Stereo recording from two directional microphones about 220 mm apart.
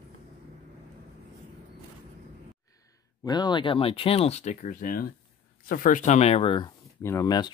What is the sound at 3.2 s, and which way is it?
Speech, 20° left (ahead or behind).